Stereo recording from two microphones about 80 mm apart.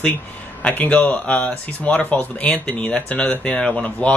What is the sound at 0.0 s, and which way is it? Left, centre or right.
Speech, centre.